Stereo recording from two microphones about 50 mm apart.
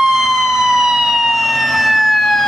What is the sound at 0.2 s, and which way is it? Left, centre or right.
Emergency vehicle, centre.